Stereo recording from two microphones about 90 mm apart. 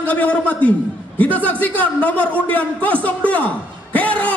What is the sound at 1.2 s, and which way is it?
A man's voice, 15° left (ahead or behind).